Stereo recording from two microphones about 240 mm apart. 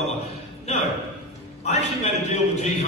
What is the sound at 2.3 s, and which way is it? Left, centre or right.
Speech, left.